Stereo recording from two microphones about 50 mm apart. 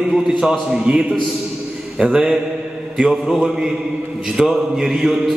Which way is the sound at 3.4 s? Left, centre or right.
Centre.